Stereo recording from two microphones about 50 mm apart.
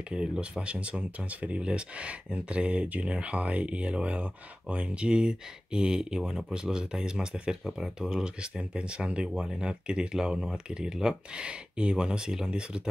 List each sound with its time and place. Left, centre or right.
0.1 s speech: centre